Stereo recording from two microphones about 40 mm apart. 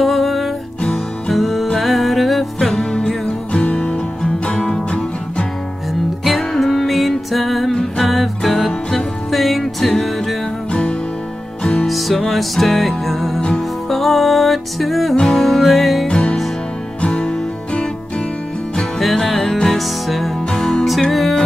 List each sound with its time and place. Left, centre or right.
0.0 s music: centre
2.7 s music: centre
6.2 s music: centre
10.7 s music: left
11.8 s music: centre
16.1 s music: left
18.9 s music: centre